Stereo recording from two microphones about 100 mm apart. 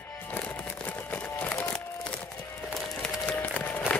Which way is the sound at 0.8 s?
15° left (ahead or behind).